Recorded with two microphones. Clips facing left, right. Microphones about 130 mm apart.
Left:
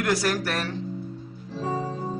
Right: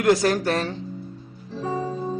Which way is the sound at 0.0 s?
20° right (ahead or behind).